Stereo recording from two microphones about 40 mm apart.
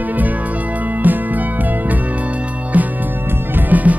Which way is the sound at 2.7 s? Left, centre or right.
Right.